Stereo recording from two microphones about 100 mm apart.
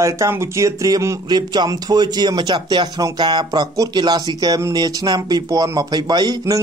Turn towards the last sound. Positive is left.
turn(degrees=-45)  # may be behind; listen again after turning